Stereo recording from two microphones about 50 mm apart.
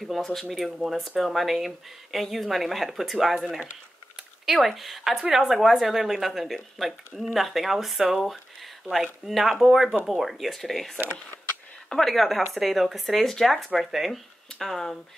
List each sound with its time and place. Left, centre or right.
0.0 s speech: centre